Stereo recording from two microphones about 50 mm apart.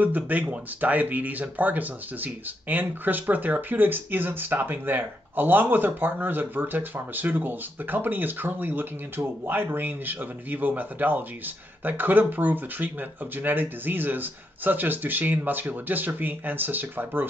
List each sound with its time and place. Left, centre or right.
0.0 s speech: right